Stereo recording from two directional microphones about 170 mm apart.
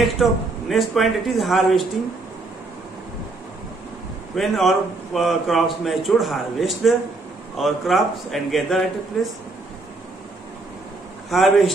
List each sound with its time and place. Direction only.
0.0 s a man's voice: centre (ahead or behind)
4.4 s a man's voice: centre (ahead or behind)
11.2 s a man's voice: centre (ahead or behind)